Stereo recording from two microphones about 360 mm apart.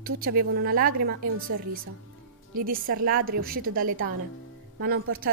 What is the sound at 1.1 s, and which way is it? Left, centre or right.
Speech, right.